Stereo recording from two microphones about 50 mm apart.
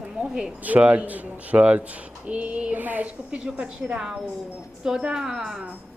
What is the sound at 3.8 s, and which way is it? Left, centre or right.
A man's voice, right.